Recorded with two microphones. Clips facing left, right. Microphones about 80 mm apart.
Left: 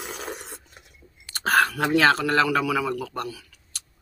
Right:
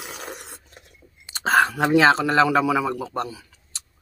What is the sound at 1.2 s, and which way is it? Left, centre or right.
Speech, right.